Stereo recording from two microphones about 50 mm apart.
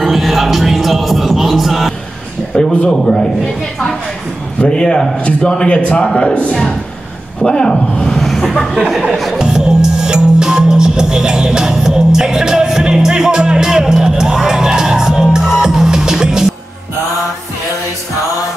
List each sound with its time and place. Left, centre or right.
0.0 s music: centre
2.5 s a man's voice: centre
4.6 s a man's voice: centre
5.8 s a man's voice: left
7.4 s a man's voice: centre
8.7 s speech: centre
9.1 s music: centre
9.4 s music: centre